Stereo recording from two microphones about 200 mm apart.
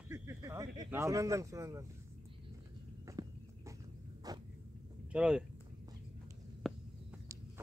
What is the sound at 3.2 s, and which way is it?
Walk, 20° right (ahead or behind).